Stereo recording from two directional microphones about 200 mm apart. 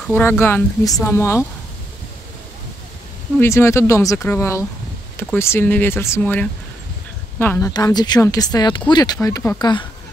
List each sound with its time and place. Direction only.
0.0 s speech: 10° left (ahead or behind)
3.3 s speech: 15° left (ahead or behind)